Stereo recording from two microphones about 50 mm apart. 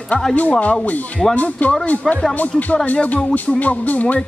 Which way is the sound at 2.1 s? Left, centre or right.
Centre.